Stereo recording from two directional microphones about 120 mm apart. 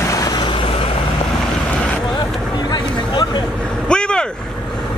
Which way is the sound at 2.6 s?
35° left (ahead or behind).